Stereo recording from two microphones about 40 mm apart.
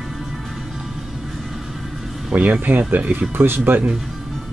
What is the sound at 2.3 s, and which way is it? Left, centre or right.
Speech, right.